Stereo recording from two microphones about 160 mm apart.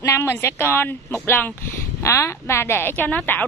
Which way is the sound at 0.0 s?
15° left (ahead or behind).